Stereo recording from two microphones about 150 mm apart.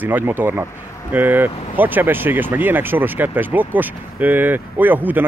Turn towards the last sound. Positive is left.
turn(degrees=-10)  # may be behind; listen again after turning